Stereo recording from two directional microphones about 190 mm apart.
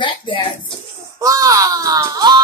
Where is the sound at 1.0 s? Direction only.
15° right (ahead or behind).